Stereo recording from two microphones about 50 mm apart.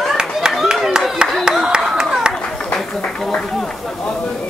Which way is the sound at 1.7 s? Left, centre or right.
Centre.